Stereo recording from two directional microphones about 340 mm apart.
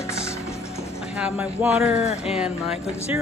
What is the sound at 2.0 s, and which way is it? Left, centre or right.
Speech, centre.